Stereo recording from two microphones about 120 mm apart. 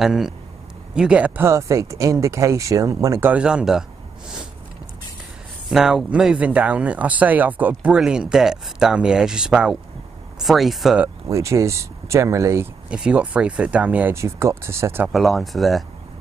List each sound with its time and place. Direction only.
0.0 s speech: 5° right (ahead or behind); by 3.3 s 30° right (ahead or behind)
3.3 s speech: 10° right (ahead or behind)
5.7 s speech: 5° right (ahead or behind)
11.2 s speech: 25° right (ahead or behind)
12.9 s speech: 10° right (ahead or behind)
14.1 s speech: 25° right (ahead or behind)
15.1 s speech: centre (ahead or behind)